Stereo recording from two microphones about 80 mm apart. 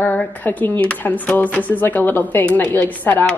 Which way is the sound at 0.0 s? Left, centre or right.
Left.